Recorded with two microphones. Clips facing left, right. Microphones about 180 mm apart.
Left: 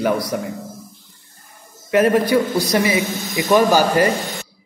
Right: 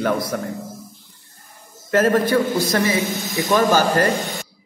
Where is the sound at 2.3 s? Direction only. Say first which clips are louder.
Left 1 dB; 15° left (ahead or behind).